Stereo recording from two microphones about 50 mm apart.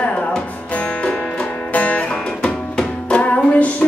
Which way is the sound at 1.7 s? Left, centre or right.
Left.